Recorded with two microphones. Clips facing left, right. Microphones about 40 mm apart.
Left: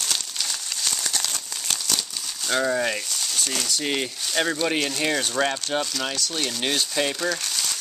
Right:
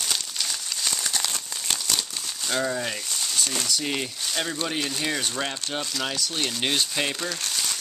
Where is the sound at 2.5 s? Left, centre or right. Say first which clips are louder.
Left 4 dB; centre.